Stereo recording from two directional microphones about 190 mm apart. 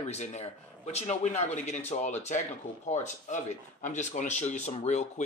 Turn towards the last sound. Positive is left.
turn(degrees=35)  # may be behind; listen again after turning